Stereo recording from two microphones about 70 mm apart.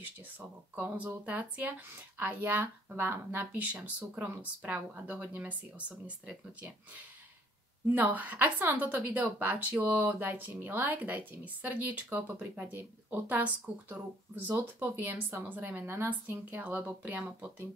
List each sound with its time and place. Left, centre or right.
0.4 s a woman's voice: right
7.9 s a woman's voice: right